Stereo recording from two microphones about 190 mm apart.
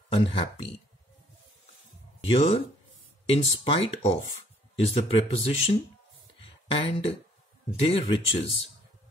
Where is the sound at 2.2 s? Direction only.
30° left (ahead or behind).